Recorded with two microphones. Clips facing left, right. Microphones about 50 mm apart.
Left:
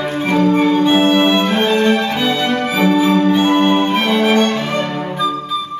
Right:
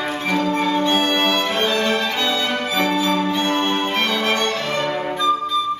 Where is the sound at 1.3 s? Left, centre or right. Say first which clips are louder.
Left 5 dB; left.